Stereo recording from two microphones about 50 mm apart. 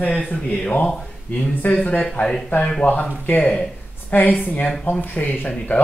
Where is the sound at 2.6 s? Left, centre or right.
Left.